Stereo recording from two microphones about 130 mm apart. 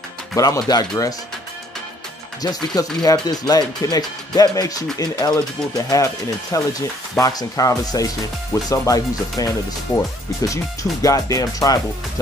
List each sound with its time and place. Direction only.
0.4 s speech: 30° left (ahead or behind)
2.4 s speech: 30° left (ahead or behind)